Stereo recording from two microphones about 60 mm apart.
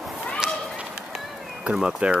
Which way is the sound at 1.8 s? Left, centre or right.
Centre.